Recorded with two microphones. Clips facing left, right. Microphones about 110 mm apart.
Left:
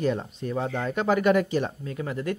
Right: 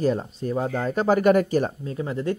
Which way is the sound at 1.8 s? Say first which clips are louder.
Right 3 dB; 30° right (ahead or behind).